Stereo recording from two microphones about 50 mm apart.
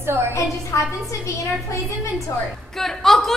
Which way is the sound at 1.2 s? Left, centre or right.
Left.